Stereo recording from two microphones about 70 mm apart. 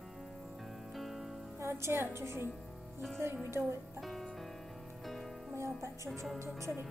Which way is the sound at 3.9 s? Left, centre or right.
Centre.